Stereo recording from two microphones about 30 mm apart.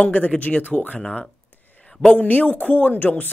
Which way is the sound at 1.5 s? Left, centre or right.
Left.